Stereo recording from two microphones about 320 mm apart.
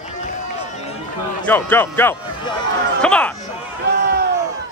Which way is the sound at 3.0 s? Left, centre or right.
Centre.